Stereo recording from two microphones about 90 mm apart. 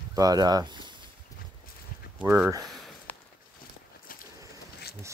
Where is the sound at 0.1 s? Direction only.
45° right (ahead or behind).